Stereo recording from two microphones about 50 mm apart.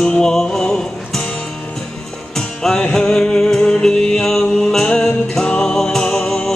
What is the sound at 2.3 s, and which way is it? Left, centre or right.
Music, centre.